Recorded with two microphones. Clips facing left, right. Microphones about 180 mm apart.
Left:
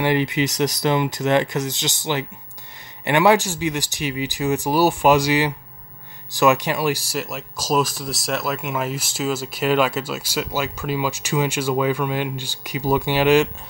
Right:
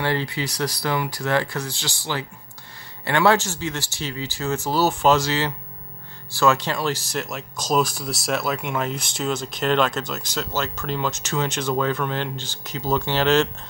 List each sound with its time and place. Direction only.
0.0 s speech: 15° left (ahead or behind)